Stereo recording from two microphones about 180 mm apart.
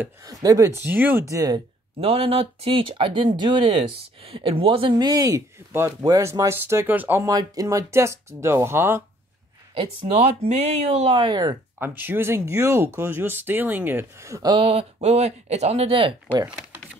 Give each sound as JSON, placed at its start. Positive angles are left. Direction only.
{"t": 0.0, "sound": "speech", "side_deg": -20}
{"t": 2.0, "sound": "speech", "side_deg": -35}
{"t": 9.8, "sound": "speech", "side_deg": -35}
{"t": 11.8, "sound": "speech", "side_deg": -10}
{"t": 14.6, "sound": "speech", "side_deg": -35}